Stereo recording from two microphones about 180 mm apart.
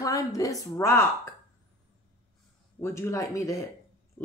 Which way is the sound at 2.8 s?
15° left (ahead or behind).